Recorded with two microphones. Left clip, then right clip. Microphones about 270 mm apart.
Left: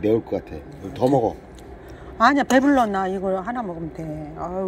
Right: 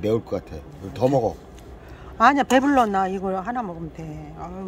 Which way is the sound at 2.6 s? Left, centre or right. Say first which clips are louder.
Even; centre.